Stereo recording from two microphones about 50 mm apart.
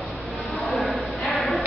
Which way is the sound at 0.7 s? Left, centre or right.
Centre.